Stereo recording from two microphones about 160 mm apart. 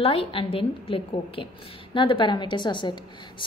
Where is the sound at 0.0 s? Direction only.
35° left (ahead or behind).